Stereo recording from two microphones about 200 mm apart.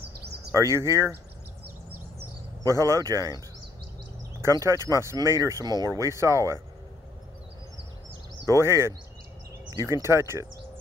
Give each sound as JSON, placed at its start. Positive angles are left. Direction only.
{"t": 0.2, "sound": "a sound", "side_deg": -55}
{"t": 0.5, "sound": "speech", "side_deg": -15}
{"t": 2.6, "sound": "speech", "side_deg": -15}
{"t": 4.4, "sound": "speech", "side_deg": -15}
{"t": 8.5, "sound": "speech", "side_deg": -15}